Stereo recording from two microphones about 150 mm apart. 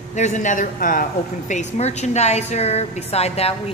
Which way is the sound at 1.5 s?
50° left (ahead or behind).